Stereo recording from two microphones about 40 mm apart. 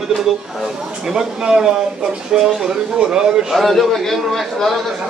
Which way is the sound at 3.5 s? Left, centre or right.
Centre.